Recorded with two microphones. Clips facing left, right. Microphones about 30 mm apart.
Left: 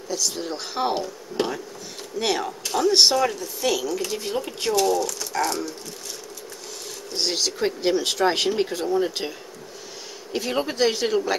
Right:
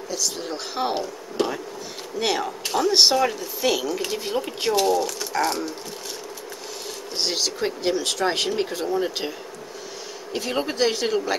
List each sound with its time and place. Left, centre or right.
0.1 s speech: centre
1.4 s speech: centre
2.1 s speech: centre
4.9 s speech: right
7.2 s speech: centre
10.3 s speech: centre